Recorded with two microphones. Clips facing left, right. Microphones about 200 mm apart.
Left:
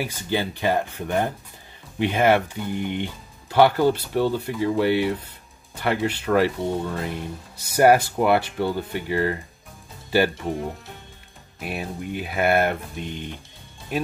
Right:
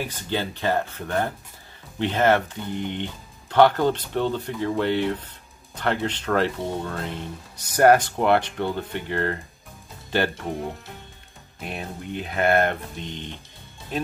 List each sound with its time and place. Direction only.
0.0 s speech: 10° left (ahead or behind)